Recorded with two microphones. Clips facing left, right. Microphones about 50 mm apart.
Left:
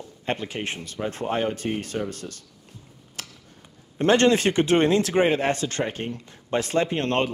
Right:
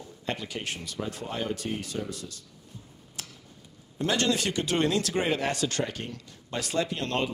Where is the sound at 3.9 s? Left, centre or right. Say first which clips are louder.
Left 8 dB; left.